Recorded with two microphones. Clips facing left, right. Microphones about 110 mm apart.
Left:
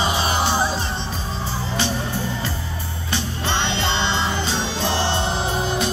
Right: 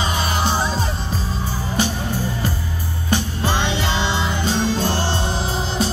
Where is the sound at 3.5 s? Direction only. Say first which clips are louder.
Even; 10° right (ahead or behind).